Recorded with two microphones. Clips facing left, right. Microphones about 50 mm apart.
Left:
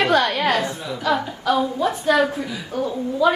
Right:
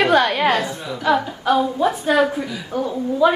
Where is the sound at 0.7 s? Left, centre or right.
Centre.